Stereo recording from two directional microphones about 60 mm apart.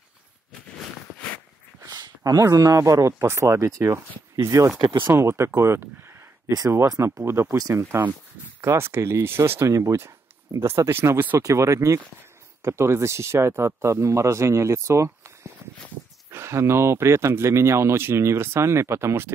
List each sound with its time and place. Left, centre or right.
2.2 s speech: right
5.0 s speech: right
5.8 s a sound: right
7.0 s speech: right
7.4 s speech: right
8.5 s speech: right